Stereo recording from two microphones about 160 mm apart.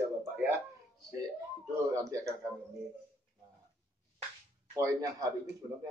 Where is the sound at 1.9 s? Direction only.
20° right (ahead or behind).